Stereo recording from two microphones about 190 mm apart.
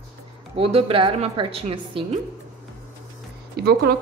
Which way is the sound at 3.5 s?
55° right (ahead or behind).